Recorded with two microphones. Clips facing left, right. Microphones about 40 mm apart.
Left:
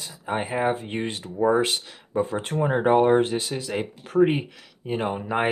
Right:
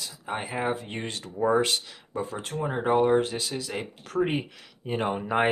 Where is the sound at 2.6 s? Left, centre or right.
Left.